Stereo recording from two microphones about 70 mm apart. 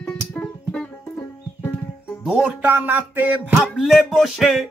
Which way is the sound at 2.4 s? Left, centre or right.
Right.